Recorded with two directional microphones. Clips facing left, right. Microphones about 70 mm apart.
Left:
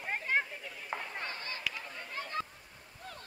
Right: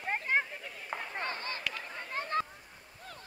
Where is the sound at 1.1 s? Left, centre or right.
Right.